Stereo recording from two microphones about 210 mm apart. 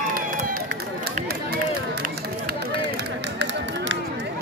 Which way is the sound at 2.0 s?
50° right (ahead or behind).